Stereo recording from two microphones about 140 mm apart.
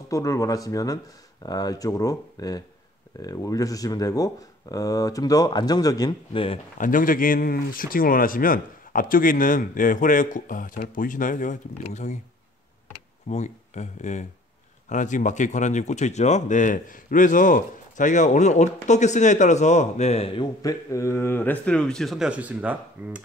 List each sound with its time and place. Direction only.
0.1 s speech: 25° left (ahead or behind)
6.8 s speech: 75° left (ahead or behind); by 12.2 s 55° left (ahead or behind)
13.3 s speech: 55° left (ahead or behind)
20.6 s speech: 20° left (ahead or behind); by 23.2 s 10° right (ahead or behind)